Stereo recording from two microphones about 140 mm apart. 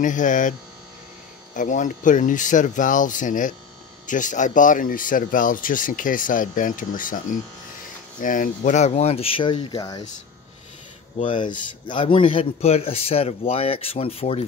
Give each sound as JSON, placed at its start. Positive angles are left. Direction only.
{"t": 0.0, "sound": "a man's voice", "side_deg": 65}
{"t": 9.8, "sound": "speech", "side_deg": 25}
{"t": 11.1, "sound": "a man's voice", "side_deg": 35}